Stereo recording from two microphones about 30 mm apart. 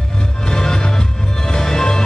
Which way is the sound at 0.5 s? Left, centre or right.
Left.